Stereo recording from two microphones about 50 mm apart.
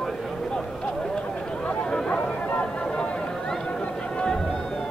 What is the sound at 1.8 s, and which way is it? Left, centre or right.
Chatter, centre.